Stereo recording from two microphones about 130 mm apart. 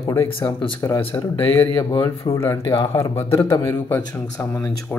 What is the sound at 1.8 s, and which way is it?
Speech, 30° left (ahead or behind).